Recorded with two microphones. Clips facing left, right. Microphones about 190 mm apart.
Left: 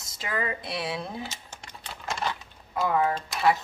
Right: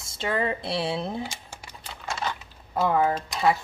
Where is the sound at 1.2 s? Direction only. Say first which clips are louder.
Right 2 dB; 10° right (ahead or behind).